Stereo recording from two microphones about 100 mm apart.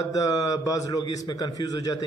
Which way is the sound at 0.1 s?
35° left (ahead or behind).